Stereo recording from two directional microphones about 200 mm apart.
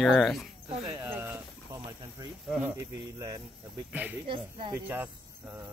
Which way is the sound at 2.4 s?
5° right (ahead or behind).